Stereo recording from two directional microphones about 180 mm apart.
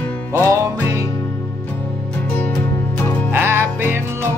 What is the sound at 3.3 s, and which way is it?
Music, 15° right (ahead or behind).